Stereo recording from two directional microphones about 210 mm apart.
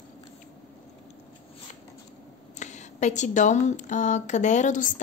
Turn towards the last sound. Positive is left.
turn(degrees=35)  # may be behind; listen again after turning